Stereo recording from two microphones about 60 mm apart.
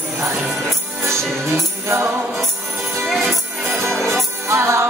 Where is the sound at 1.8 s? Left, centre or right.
Right.